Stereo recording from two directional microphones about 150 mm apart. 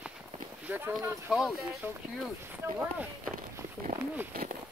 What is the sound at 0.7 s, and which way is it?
Speech, 10° right (ahead or behind).